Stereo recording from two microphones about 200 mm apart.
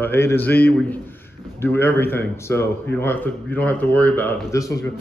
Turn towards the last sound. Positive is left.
turn(degrees=15)  # may be behind; listen again after turning